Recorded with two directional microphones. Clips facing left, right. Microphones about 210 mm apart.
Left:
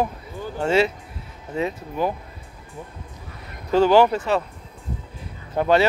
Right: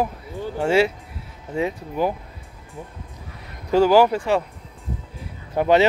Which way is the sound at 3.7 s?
10° right (ahead or behind).